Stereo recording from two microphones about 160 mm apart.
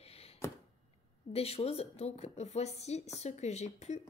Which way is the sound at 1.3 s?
40° left (ahead or behind).